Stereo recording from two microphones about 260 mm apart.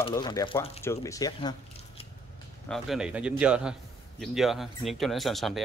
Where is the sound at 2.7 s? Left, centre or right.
Centre.